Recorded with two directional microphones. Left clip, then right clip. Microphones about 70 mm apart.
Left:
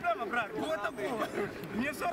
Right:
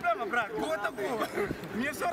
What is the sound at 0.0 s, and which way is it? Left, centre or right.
Speech, centre.